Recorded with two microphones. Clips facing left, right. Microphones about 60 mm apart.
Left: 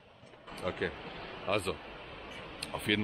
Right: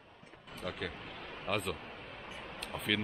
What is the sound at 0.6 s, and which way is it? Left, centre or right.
Speech, centre.